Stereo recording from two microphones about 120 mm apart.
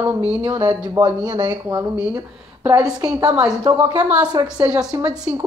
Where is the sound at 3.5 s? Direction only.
35° right (ahead or behind).